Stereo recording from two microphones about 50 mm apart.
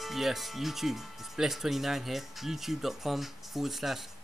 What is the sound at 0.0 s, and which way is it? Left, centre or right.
Speech, centre.